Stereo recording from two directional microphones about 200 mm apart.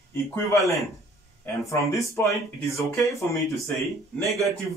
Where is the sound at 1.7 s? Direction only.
15° left (ahead or behind).